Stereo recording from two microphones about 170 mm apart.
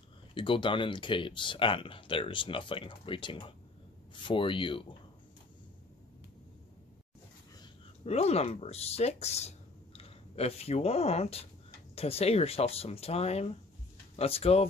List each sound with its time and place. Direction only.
0.3 s speech: 30° left (ahead or behind)
8.0 s speech: 40° left (ahead or behind)